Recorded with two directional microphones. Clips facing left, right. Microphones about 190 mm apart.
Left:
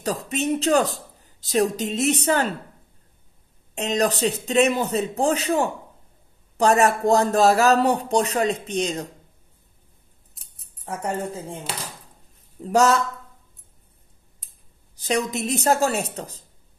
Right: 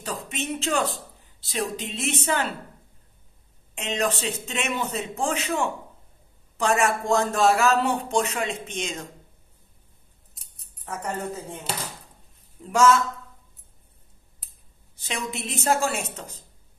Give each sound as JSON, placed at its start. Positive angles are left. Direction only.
{"t": 0.0, "sound": "speech", "side_deg": 40}
{"t": 3.7, "sound": "speech", "side_deg": 40}
{"t": 10.4, "sound": "keys jangling", "side_deg": 0}
{"t": 10.9, "sound": "speech", "side_deg": 30}
{"t": 12.6, "sound": "speech", "side_deg": 40}
{"t": 15.0, "sound": "speech", "side_deg": 40}